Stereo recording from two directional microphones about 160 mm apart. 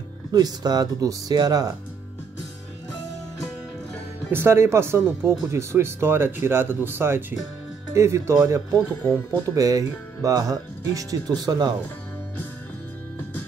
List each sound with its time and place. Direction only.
0.3 s speech: 25° right (ahead or behind)
4.3 s speech: 15° right (ahead or behind)